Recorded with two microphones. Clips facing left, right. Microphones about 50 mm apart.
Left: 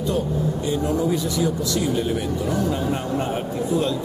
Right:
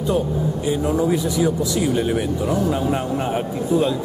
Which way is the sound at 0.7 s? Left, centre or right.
Right.